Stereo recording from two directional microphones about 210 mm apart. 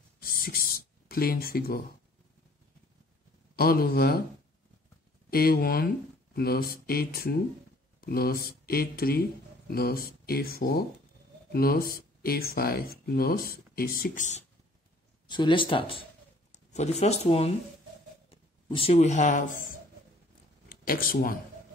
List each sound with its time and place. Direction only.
0.2 s a sound: 45° left (ahead or behind)
3.5 s speech: 45° left (ahead or behind)
5.3 s speech: 45° left (ahead or behind)
15.2 s speech: 20° left (ahead or behind); by 19.5 s 35° left (ahead or behind)
20.6 s speech: 45° left (ahead or behind)